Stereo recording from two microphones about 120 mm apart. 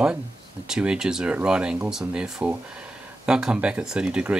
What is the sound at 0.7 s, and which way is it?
Speech, 5° right (ahead or behind).